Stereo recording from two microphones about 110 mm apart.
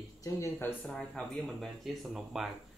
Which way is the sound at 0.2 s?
25° left (ahead or behind).